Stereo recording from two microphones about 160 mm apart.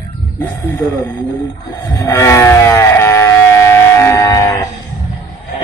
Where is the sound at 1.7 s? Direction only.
20° left (ahead or behind).